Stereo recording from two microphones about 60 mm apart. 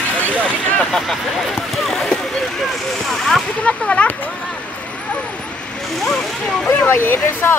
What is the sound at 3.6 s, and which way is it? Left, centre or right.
Speech, left.